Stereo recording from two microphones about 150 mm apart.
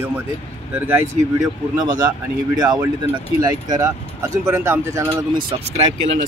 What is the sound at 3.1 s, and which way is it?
Speech, 25° right (ahead or behind).